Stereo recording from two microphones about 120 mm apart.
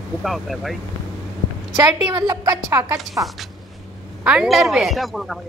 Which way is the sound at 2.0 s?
30° right (ahead or behind).